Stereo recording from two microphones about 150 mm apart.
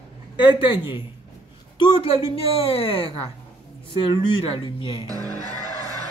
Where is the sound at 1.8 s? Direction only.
40° left (ahead or behind).